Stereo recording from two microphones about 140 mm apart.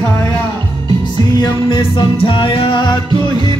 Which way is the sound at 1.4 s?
35° left (ahead or behind).